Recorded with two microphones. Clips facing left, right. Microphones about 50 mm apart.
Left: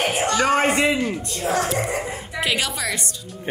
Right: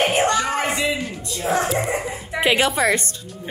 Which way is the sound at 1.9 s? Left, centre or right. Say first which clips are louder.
Right 2 dB; right.